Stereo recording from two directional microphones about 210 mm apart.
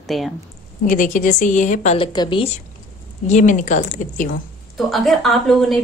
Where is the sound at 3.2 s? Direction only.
35° left (ahead or behind).